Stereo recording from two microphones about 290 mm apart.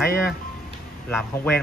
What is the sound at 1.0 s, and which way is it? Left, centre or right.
Speech, centre.